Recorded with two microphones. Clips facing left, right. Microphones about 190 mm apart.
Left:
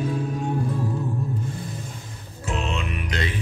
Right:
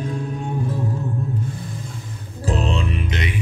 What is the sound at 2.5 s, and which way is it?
Music, 35° right (ahead or behind).